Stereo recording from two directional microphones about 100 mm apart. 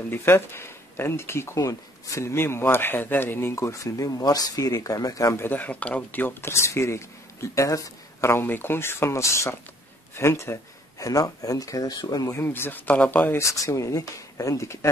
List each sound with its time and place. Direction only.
0.1 s speech: 25° left (ahead or behind)
5.3 s speech: 20° left (ahead or behind)
13.4 s speech: 30° left (ahead or behind)